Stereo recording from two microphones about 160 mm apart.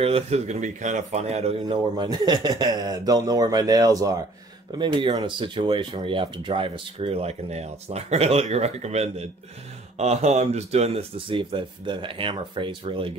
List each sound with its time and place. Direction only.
0.0 s speech: 40° right (ahead or behind)